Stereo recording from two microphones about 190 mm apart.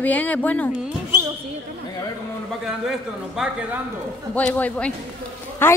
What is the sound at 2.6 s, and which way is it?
A man's voice, centre (ahead or behind).